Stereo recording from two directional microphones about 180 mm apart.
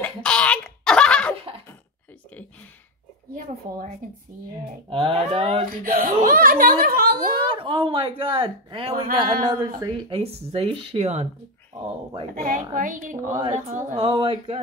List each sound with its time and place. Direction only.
0.0 s a sound: 5° left (ahead or behind)
4.8 s speech: 30° right (ahead or behind)
5.9 s a woman's voice: 50° right (ahead or behind)
6.8 s a sound: 55° right (ahead or behind)
7.4 s speech: 30° right (ahead or behind)
12.4 s a woman's voice: 45° right (ahead or behind)
13.4 s speech: 35° right (ahead or behind)